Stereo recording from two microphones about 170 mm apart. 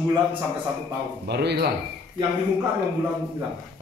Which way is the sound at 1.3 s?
75° right (ahead or behind).